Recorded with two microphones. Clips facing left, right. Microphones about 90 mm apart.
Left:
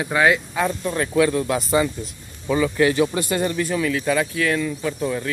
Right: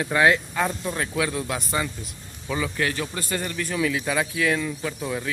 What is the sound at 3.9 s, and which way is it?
Speech, 10° right (ahead or behind).